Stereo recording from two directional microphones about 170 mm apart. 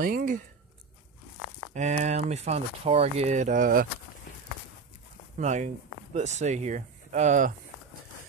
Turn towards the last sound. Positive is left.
turn(degrees=-45)  # may be behind; listen again after turning